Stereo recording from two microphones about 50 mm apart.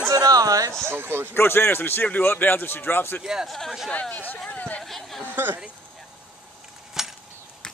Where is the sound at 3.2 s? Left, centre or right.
Centre.